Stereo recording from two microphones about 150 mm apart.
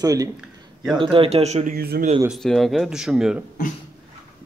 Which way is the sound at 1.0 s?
35° right (ahead or behind).